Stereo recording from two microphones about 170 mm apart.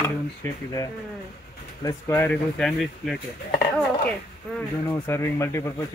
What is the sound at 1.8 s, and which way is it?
Speech, 15° left (ahead or behind).